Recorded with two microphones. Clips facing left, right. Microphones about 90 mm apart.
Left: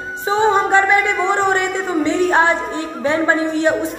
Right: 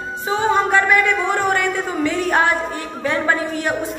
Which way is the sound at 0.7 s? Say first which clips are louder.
Left 2 dB; 25° left (ahead or behind).